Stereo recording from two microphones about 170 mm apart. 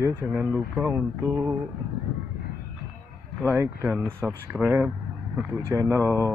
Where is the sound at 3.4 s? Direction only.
15° right (ahead or behind).